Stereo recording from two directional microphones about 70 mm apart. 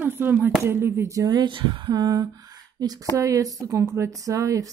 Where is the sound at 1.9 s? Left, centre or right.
Right.